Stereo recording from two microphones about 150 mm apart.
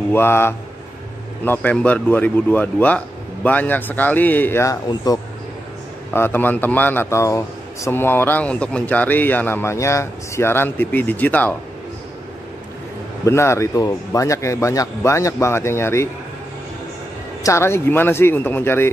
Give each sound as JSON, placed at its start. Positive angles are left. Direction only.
{"t": 0.1, "sound": "a man's voice", "side_deg": 15}
{"t": 6.1, "sound": "a man's voice", "side_deg": 15}
{"t": 13.2, "sound": "a man's voice", "side_deg": 15}
{"t": 17.4, "sound": "a man's voice", "side_deg": 20}